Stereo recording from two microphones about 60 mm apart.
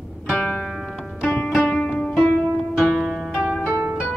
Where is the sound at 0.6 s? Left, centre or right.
Centre.